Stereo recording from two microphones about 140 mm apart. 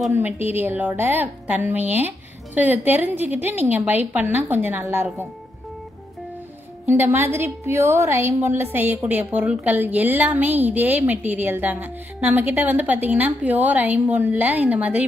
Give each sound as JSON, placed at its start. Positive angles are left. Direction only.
{"t": 0.1, "sound": "a woman's voice", "side_deg": -15}
{"t": 6.9, "sound": "a woman's voice", "side_deg": -15}